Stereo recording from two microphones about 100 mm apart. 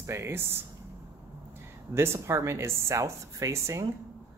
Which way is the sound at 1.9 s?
25° right (ahead or behind).